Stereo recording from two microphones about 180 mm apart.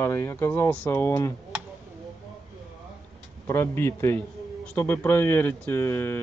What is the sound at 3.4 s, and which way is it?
Speech, 15° left (ahead or behind).